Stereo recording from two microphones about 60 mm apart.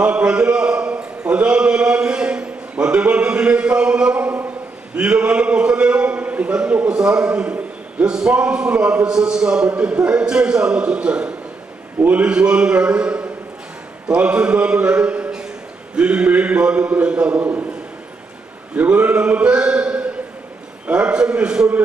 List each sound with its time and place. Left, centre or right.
0.0 s a man's voice: centre
18.8 s a man's voice: right